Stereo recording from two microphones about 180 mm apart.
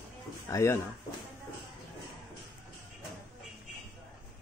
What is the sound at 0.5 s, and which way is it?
Speech, 15° left (ahead or behind).